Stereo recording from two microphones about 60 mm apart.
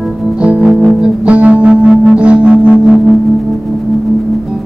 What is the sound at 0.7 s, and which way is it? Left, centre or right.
Music, centre.